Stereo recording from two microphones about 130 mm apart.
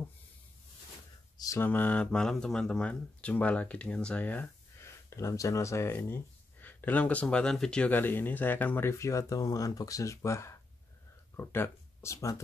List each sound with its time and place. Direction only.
1.4 s speech: 20° left (ahead or behind)
5.1 s speech: 25° left (ahead or behind)